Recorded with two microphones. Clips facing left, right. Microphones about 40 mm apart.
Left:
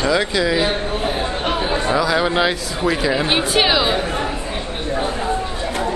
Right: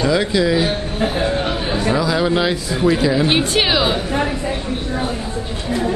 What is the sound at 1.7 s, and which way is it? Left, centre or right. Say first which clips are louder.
A woman's voice: even; centre.